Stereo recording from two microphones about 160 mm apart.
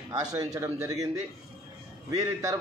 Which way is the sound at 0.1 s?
25° right (ahead or behind).